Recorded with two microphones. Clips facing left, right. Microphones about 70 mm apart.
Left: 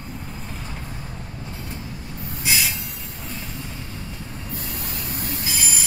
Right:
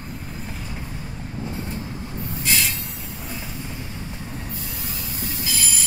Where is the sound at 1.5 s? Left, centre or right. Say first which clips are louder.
Right 4 dB; right.